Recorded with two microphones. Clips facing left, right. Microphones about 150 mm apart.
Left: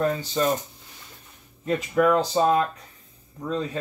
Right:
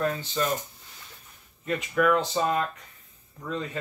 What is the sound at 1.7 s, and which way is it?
Speech, 25° left (ahead or behind).